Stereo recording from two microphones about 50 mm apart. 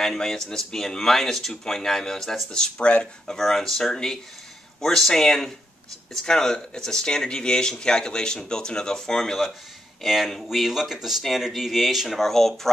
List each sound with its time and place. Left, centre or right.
0.0 s speech: centre
3.3 s speech: centre